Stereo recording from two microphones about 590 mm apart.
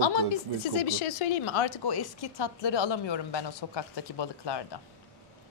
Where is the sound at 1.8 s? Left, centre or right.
Left.